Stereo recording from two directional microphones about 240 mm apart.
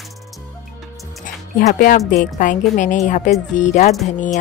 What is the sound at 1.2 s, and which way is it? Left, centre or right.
Music, left.